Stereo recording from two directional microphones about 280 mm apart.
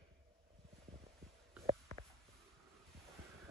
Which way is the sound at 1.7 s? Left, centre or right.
Right.